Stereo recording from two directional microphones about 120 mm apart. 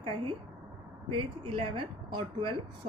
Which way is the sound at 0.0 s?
45° right (ahead or behind).